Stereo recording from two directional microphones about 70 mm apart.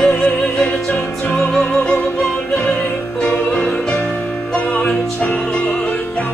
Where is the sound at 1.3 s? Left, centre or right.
Centre.